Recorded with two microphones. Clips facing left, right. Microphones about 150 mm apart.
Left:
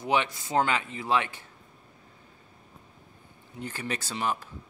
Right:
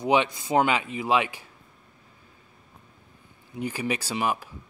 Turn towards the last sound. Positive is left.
turn(degrees=-10)  # may be behind; listen again after turning